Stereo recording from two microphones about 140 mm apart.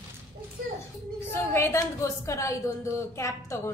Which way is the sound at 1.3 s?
15° left (ahead or behind).